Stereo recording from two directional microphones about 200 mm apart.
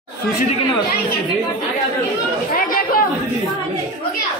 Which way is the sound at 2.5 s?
45° left (ahead or behind).